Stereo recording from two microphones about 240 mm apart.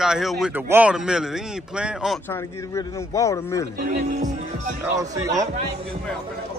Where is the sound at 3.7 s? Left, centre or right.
Right.